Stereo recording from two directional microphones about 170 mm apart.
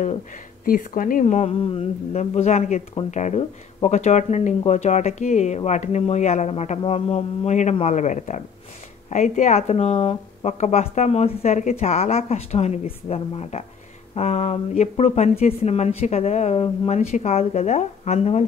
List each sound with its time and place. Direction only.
0.7 s speech: 55° left (ahead or behind)